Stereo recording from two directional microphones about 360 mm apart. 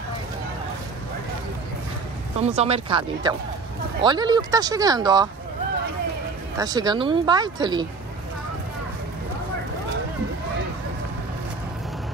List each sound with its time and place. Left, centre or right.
2.4 s speech: centre
6.6 s speech: centre